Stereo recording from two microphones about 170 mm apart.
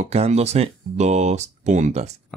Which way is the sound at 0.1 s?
40° right (ahead or behind).